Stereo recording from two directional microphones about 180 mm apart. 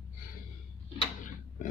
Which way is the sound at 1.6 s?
45° left (ahead or behind).